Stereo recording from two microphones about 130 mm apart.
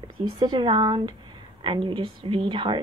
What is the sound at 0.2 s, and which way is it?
Speech, 30° right (ahead or behind).